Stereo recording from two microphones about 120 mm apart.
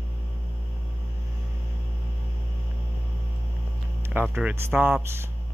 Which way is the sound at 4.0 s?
15° right (ahead or behind).